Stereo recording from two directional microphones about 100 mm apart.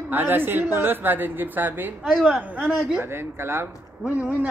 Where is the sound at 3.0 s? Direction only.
25° right (ahead or behind).